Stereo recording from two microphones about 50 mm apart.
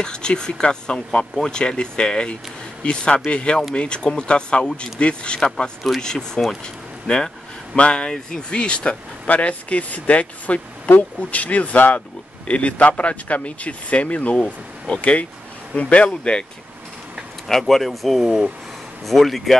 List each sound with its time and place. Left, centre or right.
0.0 s speech: centre
6.6 s a sound: centre
7.7 s speech: centre
17.5 s speech: centre